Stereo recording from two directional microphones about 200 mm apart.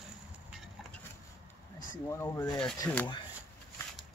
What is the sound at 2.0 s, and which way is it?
Speech, 15° left (ahead or behind).